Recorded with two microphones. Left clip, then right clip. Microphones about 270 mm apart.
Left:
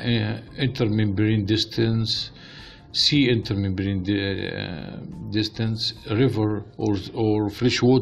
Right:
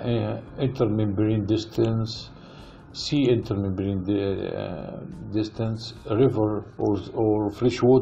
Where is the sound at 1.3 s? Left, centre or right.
Left.